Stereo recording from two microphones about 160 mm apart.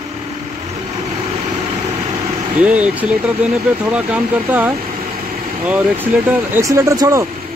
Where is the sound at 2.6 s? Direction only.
10° right (ahead or behind).